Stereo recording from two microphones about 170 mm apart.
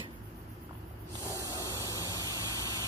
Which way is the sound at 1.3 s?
20° left (ahead or behind).